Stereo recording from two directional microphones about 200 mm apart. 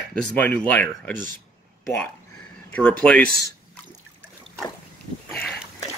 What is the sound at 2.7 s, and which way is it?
Speech, 5° left (ahead or behind).